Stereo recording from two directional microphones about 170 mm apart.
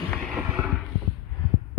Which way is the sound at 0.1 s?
5° left (ahead or behind).